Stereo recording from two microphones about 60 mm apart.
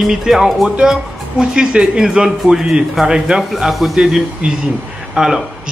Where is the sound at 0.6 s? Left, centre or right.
Centre.